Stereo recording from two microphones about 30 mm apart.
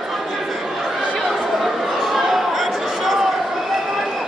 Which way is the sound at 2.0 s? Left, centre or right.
Centre.